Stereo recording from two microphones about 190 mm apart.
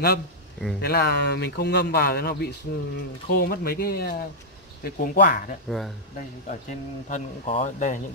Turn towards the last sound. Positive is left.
turn(degrees=40)  # may be behind; listen again after turning